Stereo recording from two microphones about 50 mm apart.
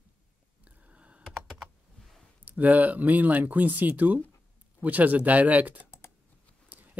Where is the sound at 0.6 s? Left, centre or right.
Right.